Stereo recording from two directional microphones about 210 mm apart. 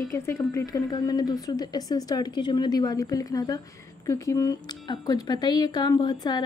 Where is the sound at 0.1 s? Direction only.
15° left (ahead or behind).